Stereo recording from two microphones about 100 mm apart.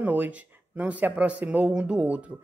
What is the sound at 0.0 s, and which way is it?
Speech, 15° right (ahead or behind).